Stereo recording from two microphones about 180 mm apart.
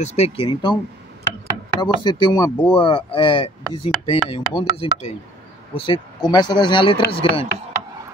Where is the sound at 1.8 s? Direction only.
25° left (ahead or behind).